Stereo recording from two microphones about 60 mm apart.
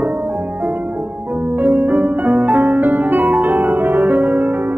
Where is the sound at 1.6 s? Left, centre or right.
Right.